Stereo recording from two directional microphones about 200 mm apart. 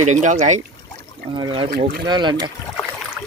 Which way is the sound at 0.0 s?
35° right (ahead or behind).